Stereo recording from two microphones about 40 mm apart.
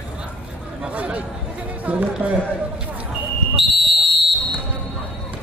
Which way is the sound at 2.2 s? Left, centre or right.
Right.